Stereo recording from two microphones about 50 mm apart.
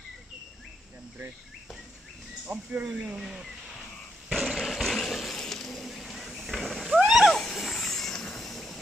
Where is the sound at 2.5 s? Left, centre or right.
Right.